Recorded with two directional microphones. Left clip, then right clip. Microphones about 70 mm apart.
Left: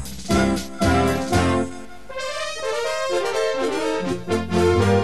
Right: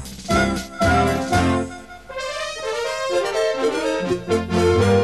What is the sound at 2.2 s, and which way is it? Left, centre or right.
Brass instrument, right.